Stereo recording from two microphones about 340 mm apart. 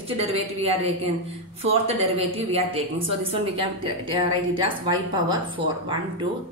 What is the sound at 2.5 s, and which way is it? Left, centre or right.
A woman's voice, centre.